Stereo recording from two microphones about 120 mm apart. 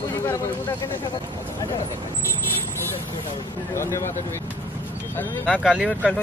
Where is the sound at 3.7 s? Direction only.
20° left (ahead or behind).